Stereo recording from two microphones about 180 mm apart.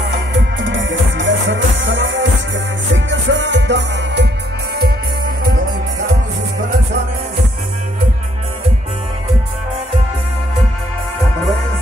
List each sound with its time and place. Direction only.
0.1 s music: 90° right; by 4.3 s 75° right (ahead or behind)